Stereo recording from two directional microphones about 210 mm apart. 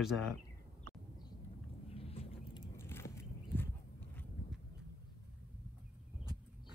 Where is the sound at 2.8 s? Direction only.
10° left (ahead or behind).